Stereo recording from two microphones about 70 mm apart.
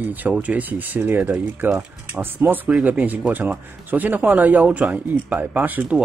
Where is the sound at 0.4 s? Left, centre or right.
Right.